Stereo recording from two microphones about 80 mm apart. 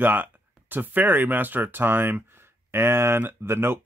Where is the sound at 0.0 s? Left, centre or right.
Right.